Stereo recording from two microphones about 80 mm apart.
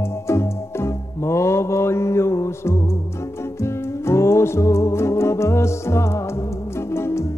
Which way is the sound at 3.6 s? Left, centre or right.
Left.